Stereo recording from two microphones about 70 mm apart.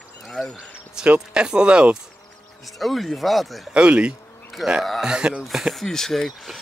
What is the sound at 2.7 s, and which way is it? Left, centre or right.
Speech, centre.